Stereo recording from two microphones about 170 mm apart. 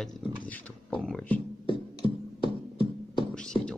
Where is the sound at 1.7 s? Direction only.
30° left (ahead or behind).